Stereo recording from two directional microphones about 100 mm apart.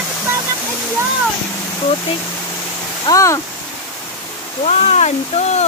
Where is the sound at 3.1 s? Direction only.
30° left (ahead or behind).